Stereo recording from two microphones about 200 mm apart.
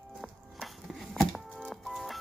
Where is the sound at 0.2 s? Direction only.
Centre (ahead or behind).